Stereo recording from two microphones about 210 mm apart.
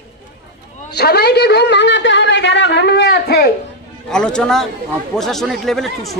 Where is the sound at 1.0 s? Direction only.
50° left (ahead or behind).